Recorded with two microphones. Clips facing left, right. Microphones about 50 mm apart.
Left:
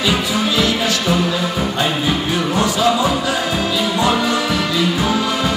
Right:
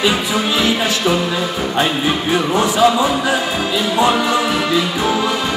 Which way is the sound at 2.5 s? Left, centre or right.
Right.